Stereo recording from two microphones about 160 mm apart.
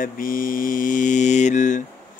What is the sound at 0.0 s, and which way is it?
Mantra, 60° left (ahead or behind).